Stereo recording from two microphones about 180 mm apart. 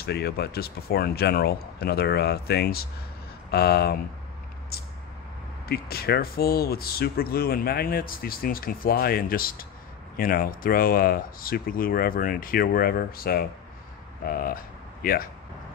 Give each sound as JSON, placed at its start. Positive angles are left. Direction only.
{"t": 0.0, "sound": "speech", "side_deg": 60}
{"t": 5.7, "sound": "speech", "side_deg": 60}